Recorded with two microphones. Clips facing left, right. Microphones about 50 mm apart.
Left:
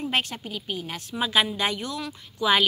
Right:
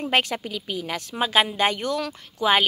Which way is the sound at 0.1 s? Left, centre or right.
Right.